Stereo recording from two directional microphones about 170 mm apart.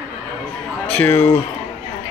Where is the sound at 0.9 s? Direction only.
10° left (ahead or behind).